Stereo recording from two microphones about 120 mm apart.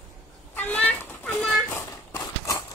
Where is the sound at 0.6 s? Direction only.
15° left (ahead or behind).